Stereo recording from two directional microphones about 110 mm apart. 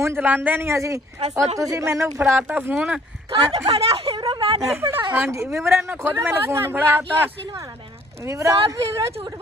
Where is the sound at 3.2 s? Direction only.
55° right (ahead or behind).